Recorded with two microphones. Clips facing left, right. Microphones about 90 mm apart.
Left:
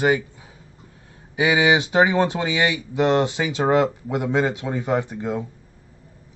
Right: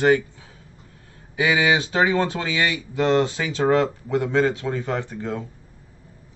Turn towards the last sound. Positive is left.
turn(degrees=15)  # may be behind; listen again after turning